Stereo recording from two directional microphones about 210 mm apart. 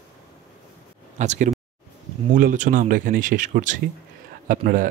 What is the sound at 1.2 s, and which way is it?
Speech, 35° right (ahead or behind).